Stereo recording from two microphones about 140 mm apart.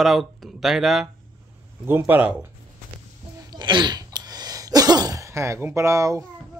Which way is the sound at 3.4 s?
30° right (ahead or behind).